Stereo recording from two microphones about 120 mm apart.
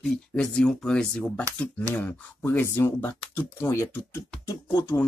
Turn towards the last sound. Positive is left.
turn(degrees=30)  # may be behind; listen again after turning